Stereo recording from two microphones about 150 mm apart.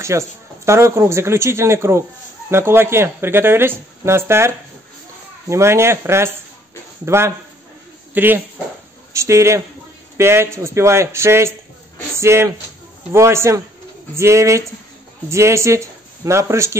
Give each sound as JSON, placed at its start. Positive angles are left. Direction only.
{"t": 0.1, "sound": "speech", "side_deg": -20}
{"t": 5.5, "sound": "speech", "side_deg": -20}